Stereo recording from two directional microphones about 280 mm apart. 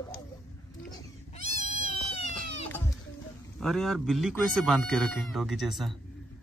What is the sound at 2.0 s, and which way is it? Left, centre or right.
Cat, left.